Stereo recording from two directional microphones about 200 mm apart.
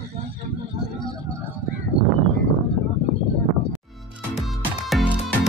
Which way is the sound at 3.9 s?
Centre (ahead or behind).